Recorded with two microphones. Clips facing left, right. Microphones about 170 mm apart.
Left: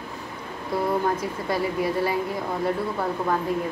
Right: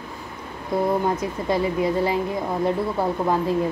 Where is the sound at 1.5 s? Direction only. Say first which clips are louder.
Right 3 dB; 20° right (ahead or behind).